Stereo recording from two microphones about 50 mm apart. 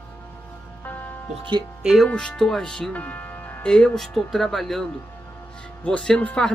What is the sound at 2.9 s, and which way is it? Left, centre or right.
Music, left.